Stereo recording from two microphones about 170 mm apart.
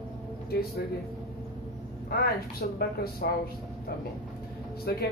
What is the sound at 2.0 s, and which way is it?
A woman's voice, 65° left (ahead or behind).